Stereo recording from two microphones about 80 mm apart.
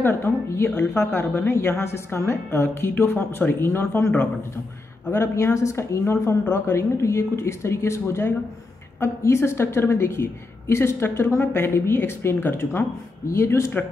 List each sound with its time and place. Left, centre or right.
0.0 s a woman's voice: left
5.1 s a woman's voice: left